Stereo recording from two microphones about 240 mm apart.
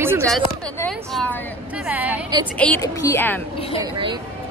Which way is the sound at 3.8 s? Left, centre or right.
Centre.